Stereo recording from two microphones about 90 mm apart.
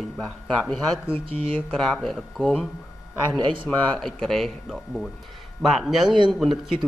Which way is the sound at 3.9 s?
5° left (ahead or behind).